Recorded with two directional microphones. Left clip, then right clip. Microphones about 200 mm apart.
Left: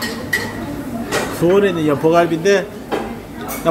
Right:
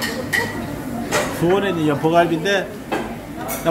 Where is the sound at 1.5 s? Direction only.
15° left (ahead or behind).